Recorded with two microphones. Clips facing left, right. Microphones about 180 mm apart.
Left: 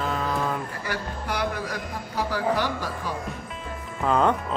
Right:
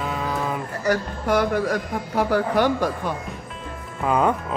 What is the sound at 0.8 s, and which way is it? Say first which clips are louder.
A man's voice: right 13 dB; 50° right (ahead or behind).